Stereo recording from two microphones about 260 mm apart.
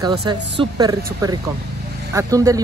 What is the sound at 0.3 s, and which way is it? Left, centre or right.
Speech, centre.